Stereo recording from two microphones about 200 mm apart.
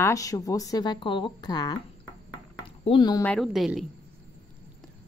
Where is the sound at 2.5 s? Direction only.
25° left (ahead or behind).